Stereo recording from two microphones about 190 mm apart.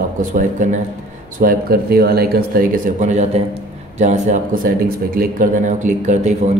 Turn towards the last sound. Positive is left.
turn(degrees=-40)  # may be behind; listen again after turning